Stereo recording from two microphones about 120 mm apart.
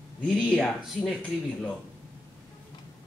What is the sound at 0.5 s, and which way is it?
Speech, centre (ahead or behind).